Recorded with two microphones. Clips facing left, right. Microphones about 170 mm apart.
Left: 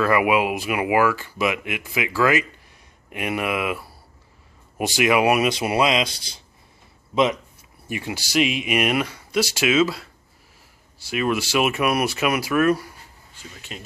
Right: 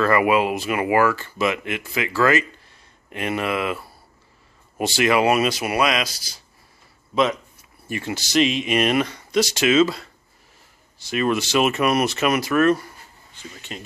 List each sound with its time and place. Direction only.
0.0 s speech: 10° left (ahead or behind)
7.9 s speech: 10° left (ahead or behind)